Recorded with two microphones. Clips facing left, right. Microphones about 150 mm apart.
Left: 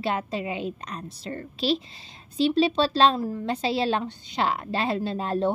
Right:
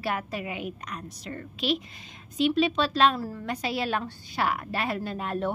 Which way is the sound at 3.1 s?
20° left (ahead or behind).